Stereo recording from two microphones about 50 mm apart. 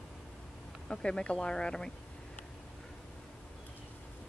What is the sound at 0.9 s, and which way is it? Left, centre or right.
Speech, centre.